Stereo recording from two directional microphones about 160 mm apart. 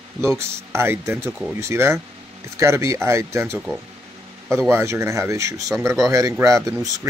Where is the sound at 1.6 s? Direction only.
15° right (ahead or behind).